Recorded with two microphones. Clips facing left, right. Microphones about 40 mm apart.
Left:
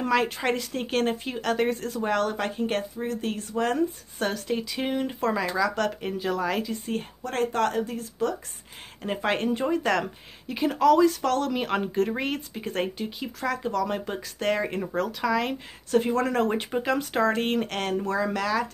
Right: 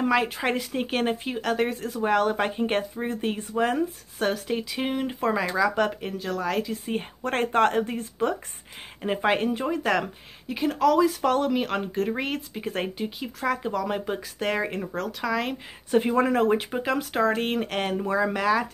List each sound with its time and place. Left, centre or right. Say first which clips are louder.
0.0 s speech: right 1 dB; centre
2.3 s speech: right 2 dB; right
3.6 s speech: even; centre
6.9 s speech: right 1 dB; centre
7.2 s speech: right 3 dB; right
9.0 s speech: right 2 dB; centre
11.6 s speech: left 1 dB; centre
15.9 s speech: right 2 dB; centre
16.3 s speech: right 2 dB; centre